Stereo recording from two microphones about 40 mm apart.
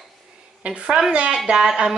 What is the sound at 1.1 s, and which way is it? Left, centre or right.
Speech, right.